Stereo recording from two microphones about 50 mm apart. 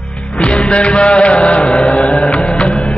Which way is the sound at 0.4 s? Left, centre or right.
Left.